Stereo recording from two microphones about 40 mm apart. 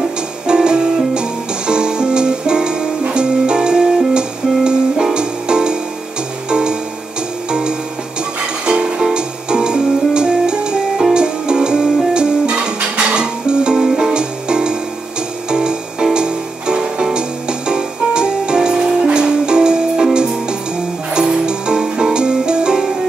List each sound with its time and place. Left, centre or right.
0.5 s music: right